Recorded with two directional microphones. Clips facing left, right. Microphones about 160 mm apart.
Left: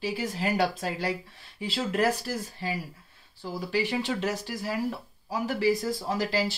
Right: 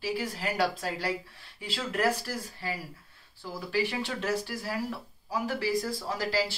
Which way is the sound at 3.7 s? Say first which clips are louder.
Left 2 dB; 20° left (ahead or behind).